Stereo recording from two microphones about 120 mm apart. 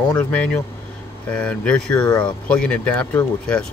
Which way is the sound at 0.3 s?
10° left (ahead or behind).